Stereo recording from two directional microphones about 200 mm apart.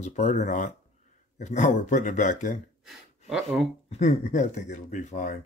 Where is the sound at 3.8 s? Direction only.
35° left (ahead or behind).